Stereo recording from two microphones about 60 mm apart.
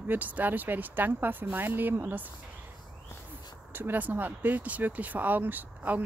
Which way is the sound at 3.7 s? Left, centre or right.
Right.